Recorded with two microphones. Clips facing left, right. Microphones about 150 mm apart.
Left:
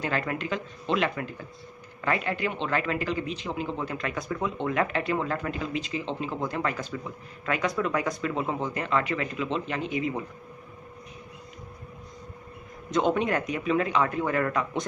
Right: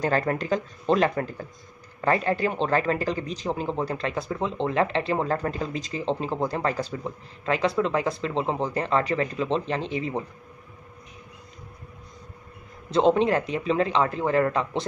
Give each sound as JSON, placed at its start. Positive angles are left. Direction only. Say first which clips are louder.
{"t": 0.0, "sound": "a man's voice", "louder": "right 5 dB", "side_deg": -40}
{"t": 12.9, "sound": "a man's voice", "louder": "right 5 dB", "side_deg": -30}